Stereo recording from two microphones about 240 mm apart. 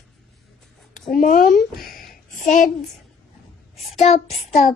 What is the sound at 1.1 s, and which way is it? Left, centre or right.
Speech, left.